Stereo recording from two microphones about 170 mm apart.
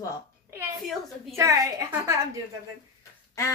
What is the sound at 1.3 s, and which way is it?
Speech, 20° right (ahead or behind).